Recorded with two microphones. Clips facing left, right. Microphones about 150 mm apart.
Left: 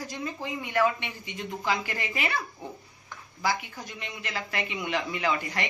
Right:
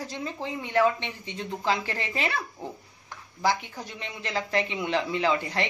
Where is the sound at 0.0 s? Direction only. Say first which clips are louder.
Right 1 dB; 25° right (ahead or behind).